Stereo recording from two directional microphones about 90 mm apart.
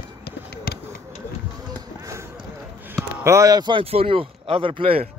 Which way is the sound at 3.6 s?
75° right (ahead or behind).